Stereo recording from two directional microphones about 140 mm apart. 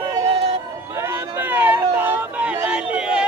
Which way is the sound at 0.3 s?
45° right (ahead or behind).